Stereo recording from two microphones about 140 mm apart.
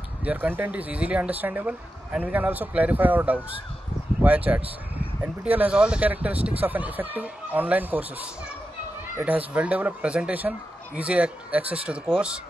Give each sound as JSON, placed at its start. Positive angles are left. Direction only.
{"t": 0.2, "sound": "speech", "side_deg": -10}